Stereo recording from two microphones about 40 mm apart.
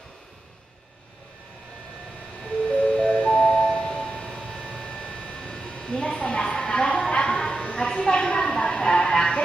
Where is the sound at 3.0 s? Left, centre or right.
Centre.